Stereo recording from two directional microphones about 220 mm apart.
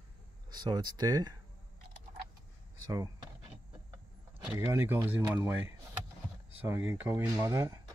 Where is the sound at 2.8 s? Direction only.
15° right (ahead or behind).